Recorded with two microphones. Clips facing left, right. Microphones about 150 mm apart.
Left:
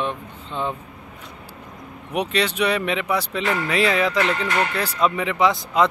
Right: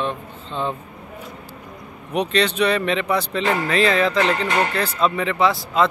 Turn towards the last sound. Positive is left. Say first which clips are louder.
# even
turn(degrees=20)  # may be behind; listen again after turning